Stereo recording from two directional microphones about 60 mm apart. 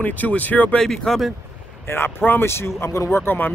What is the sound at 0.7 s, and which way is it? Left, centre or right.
Speech, centre.